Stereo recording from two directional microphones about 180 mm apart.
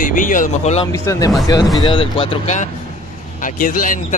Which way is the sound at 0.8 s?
20° left (ahead or behind).